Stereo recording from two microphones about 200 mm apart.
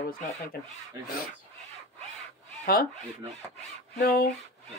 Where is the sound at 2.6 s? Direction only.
50° left (ahead or behind).